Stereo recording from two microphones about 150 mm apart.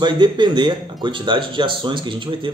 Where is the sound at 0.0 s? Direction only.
30° right (ahead or behind).